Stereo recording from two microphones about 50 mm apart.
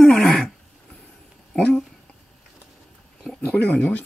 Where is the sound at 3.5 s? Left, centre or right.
Left.